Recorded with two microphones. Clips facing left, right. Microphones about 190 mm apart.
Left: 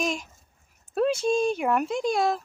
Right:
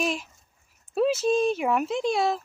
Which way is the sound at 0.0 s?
5° right (ahead or behind).